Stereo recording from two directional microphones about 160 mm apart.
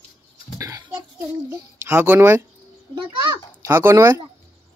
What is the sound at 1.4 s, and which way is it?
Speech, 15° right (ahead or behind).